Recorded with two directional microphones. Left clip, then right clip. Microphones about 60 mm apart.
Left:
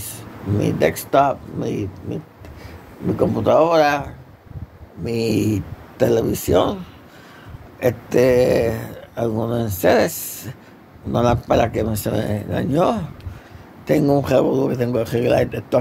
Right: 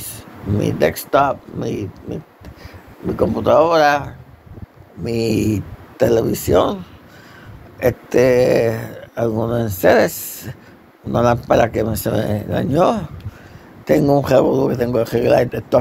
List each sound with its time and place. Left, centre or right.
0.6 s speech: right
3.3 s speech: right
5.0 s speech: right
5.9 s speech: right
7.8 s speech: right
12.4 s a man's voice: right